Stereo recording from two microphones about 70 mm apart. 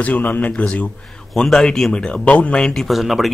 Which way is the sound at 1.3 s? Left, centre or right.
Centre.